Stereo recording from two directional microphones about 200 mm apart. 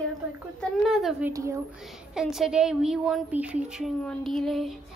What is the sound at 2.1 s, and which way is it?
A woman's voice, centre (ahead or behind).